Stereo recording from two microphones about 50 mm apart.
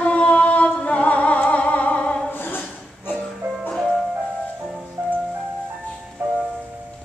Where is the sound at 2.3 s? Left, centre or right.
Left.